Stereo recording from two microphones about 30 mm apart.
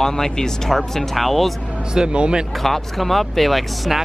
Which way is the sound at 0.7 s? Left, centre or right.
Centre.